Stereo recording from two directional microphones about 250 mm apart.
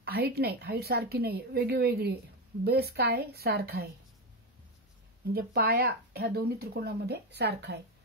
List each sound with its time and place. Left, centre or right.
0.0 s speech: right
5.3 s speech: right